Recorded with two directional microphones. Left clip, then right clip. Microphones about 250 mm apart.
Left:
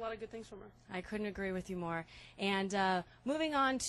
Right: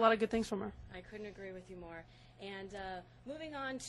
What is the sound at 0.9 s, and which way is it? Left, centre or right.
A woman's voice, left.